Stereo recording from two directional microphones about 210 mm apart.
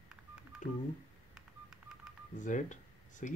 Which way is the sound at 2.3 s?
35° left (ahead or behind).